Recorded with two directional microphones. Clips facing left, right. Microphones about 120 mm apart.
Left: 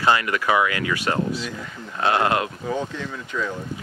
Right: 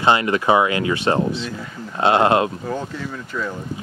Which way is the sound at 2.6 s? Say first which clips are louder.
Even; centre (ahead or behind).